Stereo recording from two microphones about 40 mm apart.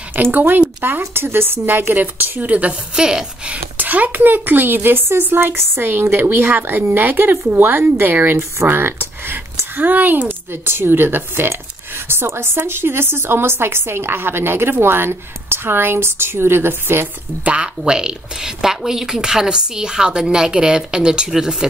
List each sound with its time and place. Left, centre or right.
0.1 s speech: right
0.8 s speech: right
3.0 s a woman's voice: centre
3.7 s speech: right
5.3 s a woman's voice: right
7.1 s speech: right
8.0 s a woman's voice: right
9.8 s speech: right
12.1 s a woman's voice: right
17.5 s a woman's voice: right